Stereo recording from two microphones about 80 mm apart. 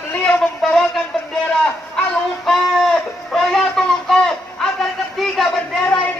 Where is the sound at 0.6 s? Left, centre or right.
Centre.